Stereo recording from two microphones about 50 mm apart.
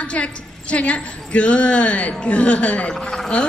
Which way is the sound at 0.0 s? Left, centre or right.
Left.